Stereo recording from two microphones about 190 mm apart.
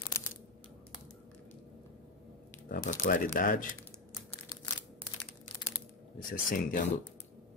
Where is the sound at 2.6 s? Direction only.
50° left (ahead or behind).